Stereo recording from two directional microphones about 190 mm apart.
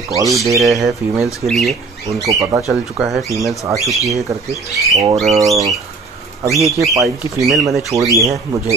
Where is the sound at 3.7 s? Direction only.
15° right (ahead or behind).